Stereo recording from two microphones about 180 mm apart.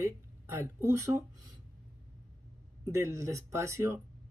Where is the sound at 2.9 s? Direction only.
15° right (ahead or behind).